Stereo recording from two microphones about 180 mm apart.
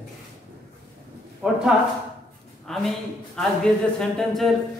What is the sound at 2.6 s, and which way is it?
Speech, centre (ahead or behind).